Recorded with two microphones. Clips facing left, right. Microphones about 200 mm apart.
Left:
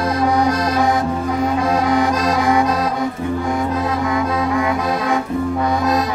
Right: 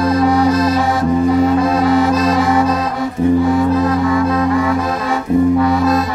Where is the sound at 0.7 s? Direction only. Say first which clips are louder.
Right 2 dB; 15° left (ahead or behind).